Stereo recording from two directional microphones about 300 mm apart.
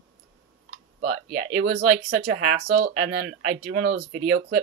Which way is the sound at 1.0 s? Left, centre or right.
Right.